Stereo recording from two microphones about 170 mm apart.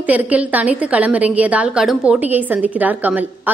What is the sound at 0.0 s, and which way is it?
A woman's voice, 10° right (ahead or behind).